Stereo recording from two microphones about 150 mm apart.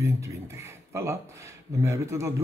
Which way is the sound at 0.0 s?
20° right (ahead or behind).